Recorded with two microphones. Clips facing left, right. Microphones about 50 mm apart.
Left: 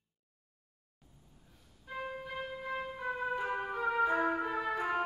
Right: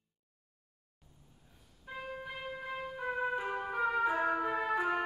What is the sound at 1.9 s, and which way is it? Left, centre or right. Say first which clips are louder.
Music: left 2 dB; centre.